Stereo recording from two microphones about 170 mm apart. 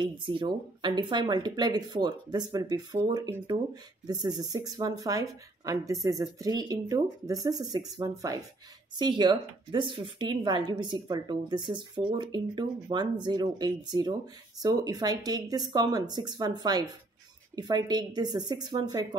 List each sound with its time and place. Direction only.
0.0 s a woman's voice: 30° right (ahead or behind)